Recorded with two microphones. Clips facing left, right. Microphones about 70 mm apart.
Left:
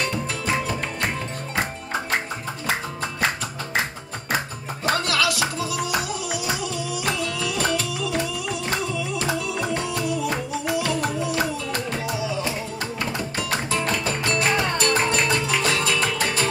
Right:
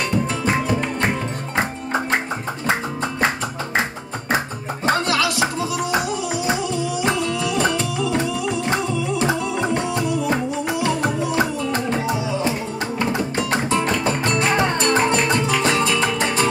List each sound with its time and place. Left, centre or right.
4.8 s music: right